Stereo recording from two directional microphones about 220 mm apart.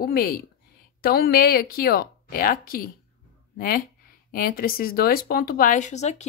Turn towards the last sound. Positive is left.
turn(degrees=30)  # may be behind; listen again after turning